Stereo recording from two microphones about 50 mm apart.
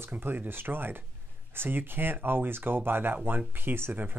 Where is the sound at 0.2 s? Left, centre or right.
Right.